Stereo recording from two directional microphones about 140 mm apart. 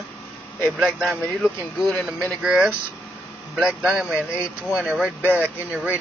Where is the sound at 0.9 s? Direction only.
Centre (ahead or behind).